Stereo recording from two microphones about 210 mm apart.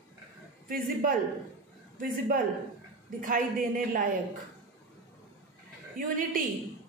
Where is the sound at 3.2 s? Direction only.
40° right (ahead or behind).